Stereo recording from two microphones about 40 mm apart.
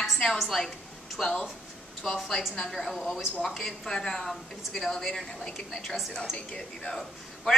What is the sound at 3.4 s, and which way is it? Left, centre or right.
Speech, centre.